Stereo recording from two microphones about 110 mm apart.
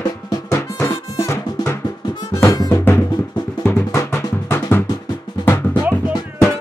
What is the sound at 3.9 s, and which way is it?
Drum, 25° left (ahead or behind).